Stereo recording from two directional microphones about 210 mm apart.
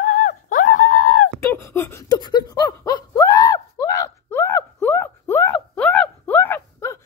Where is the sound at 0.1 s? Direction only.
40° left (ahead or behind).